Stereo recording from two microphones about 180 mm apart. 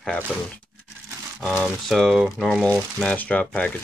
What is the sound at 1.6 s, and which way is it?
Speech, centre (ahead or behind).